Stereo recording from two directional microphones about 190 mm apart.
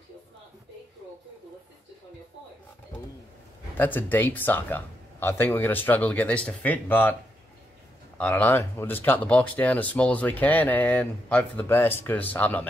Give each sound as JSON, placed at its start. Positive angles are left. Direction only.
{"t": 3.7, "sound": "speech", "side_deg": 10}
{"t": 8.2, "sound": "speech", "side_deg": 10}